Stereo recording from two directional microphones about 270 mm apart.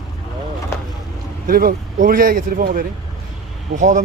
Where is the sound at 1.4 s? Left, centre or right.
Right.